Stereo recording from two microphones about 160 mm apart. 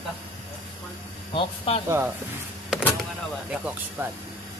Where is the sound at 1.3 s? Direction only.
35° left (ahead or behind).